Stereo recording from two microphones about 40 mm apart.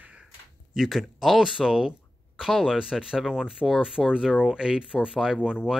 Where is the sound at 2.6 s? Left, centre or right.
Centre.